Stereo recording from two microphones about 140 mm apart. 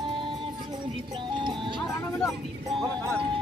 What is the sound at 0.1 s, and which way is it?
Music, 35° right (ahead or behind).